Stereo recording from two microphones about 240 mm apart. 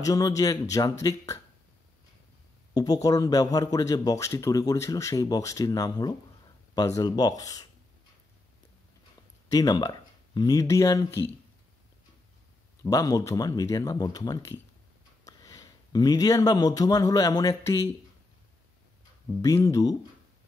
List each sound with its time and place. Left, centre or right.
0.0 s speech: centre
2.7 s speech: centre
9.5 s speech: centre
12.8 s speech: centre
19.4 s speech: centre